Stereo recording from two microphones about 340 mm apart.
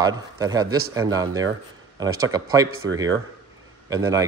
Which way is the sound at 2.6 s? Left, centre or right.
Right.